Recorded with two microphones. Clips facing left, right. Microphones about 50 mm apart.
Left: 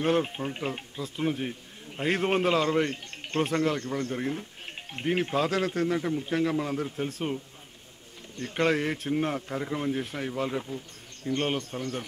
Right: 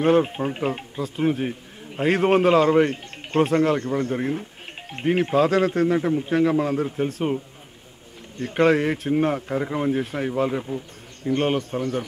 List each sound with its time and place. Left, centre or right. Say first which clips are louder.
0.0 s speech: right 7 dB; centre
8.4 s speech: right 7 dB; centre